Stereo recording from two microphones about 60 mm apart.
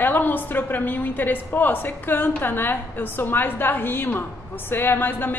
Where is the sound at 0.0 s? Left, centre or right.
Left.